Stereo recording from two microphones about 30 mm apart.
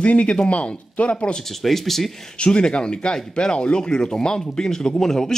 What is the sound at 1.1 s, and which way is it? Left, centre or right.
Speech, left.